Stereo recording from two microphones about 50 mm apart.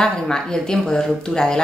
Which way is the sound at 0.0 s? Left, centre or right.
Centre.